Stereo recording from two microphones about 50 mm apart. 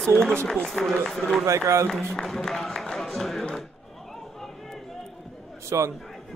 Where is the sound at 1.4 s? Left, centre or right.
Right.